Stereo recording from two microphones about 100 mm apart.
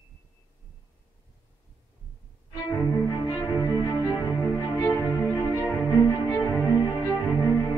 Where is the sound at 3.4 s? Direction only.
30° left (ahead or behind).